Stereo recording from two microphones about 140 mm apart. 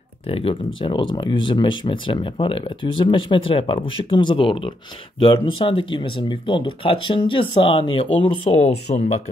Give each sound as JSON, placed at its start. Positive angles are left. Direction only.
{"t": 0.3, "sound": "speech", "side_deg": 40}